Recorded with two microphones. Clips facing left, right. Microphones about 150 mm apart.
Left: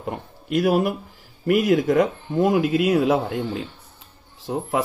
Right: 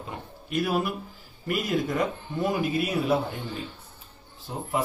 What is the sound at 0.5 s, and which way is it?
Speech, 65° left (ahead or behind).